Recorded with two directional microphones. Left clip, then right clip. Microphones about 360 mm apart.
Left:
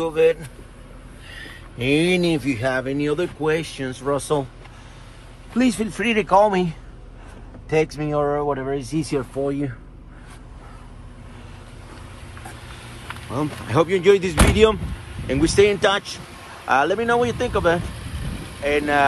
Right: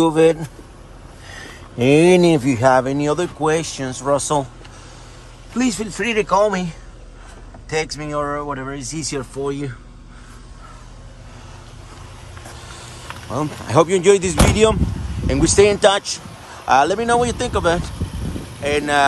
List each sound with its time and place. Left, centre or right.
0.0 s speech: centre
1.3 s a sound: right
2.3 s speech: right
5.5 s speech: centre
7.7 s speech: centre
13.3 s speech: centre